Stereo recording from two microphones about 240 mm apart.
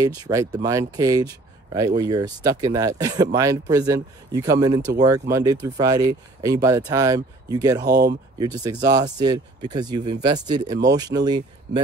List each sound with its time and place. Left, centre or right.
0.0 s speech: centre
7.9 s speech: right
8.4 s speech: centre